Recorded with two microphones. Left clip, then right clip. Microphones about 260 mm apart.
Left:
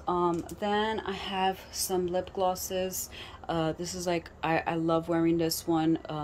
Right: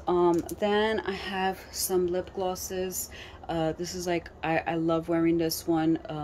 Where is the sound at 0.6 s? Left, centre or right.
Right.